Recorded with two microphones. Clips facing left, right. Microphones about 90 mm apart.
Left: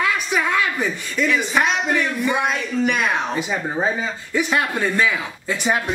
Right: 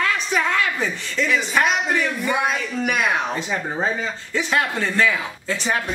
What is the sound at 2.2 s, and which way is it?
Speech, centre (ahead or behind).